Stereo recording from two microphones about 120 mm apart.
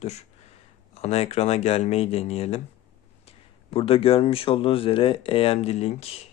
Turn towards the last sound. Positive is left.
turn(degrees=60)  # may be behind; listen again after turning